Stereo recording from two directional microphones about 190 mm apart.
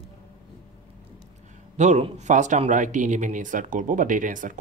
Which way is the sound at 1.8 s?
35° right (ahead or behind).